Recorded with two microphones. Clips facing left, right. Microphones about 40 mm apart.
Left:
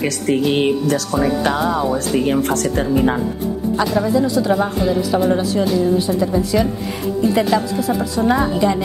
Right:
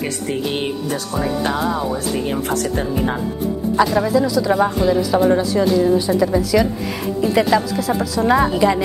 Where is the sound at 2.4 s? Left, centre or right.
Left.